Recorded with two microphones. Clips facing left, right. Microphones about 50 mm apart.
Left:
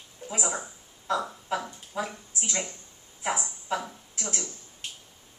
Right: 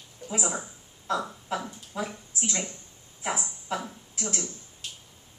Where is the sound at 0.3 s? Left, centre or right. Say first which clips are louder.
Right 1 dB; centre.